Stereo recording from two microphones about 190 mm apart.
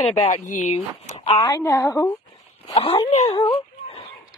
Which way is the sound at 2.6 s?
30° left (ahead or behind).